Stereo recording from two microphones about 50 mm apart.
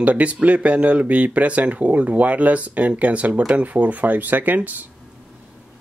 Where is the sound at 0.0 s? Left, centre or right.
Right.